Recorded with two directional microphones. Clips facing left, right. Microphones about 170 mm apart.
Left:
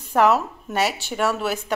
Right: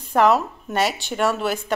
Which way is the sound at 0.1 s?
10° left (ahead or behind).